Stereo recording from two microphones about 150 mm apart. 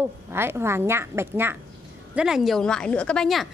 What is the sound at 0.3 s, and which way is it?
A woman's voice, 15° right (ahead or behind).